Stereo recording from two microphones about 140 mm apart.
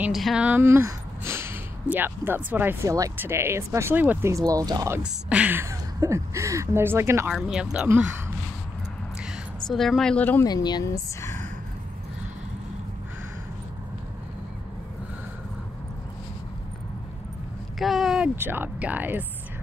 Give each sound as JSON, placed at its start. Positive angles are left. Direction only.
{"t": 0.0, "sound": "speech", "side_deg": 0}
{"t": 5.0, "sound": "speech", "side_deg": -10}
{"t": 7.3, "sound": "speech", "side_deg": -5}
{"t": 9.2, "sound": "a sound", "side_deg": 0}
{"t": 10.4, "sound": "speech", "side_deg": 30}
{"t": 17.7, "sound": "a sound", "side_deg": 0}
{"t": 18.3, "sound": "speech", "side_deg": -15}